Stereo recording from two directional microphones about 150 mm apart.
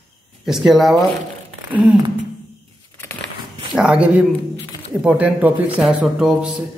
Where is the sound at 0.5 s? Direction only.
Centre (ahead or behind).